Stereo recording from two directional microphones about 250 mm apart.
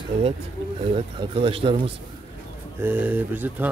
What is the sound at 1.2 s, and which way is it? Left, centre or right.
Speech, right.